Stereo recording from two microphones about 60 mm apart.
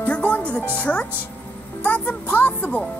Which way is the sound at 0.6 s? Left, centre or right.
Left.